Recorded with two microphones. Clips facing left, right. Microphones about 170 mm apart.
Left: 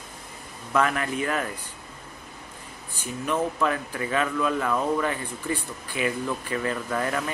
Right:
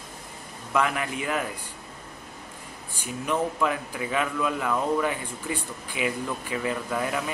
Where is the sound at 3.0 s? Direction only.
15° right (ahead or behind).